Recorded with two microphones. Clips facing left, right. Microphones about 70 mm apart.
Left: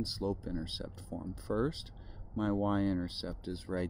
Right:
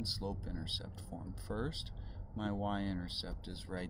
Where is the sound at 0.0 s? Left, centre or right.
Centre.